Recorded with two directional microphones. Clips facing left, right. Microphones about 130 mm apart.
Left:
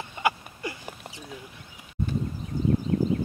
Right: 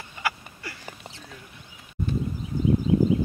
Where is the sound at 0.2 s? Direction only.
20° left (ahead or behind).